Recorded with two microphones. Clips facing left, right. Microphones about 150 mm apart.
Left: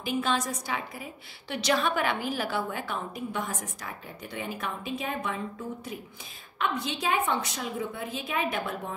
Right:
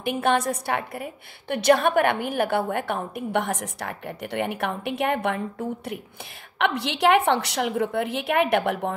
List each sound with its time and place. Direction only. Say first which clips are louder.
0.0 s a woman's voice: right 6 dB; 60° right (ahead or behind)